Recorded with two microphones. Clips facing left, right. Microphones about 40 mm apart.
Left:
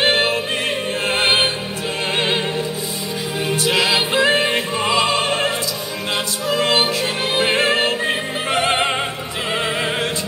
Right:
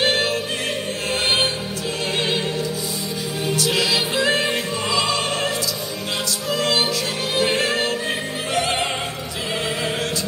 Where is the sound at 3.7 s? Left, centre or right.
Centre.